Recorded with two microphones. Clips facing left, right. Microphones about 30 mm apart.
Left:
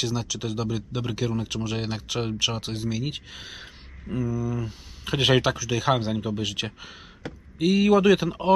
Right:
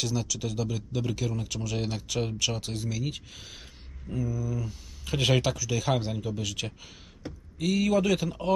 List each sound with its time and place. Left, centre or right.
0.0 s speech: left
3.3 s speech: left
4.1 s speech: left
4.6 s speech: left
5.9 s speech: left
6.2 s speech: left